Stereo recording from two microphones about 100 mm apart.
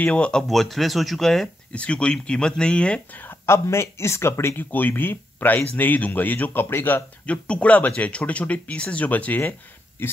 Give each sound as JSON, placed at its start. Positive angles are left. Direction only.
{"t": 0.0, "sound": "speech", "side_deg": 10}
{"t": 3.3, "sound": "speech", "side_deg": 25}